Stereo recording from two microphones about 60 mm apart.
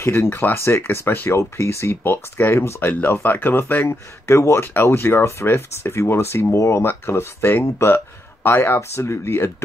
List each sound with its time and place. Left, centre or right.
0.0 s speech: left
1.0 s speech: left
1.3 s speech: left
2.9 s speech: left
3.9 s speech: left
4.9 s speech: left
6.5 s speech: left
6.8 s speech: left